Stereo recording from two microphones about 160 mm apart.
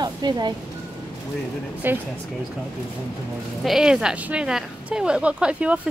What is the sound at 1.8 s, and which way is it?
Speech, 10° right (ahead or behind).